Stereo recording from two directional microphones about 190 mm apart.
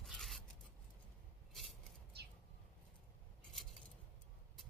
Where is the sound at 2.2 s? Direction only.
60° right (ahead or behind).